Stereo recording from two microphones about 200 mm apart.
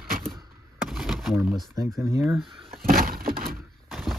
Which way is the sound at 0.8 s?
Centre (ahead or behind).